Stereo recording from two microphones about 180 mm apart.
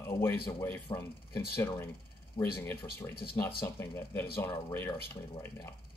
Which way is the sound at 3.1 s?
60° left (ahead or behind).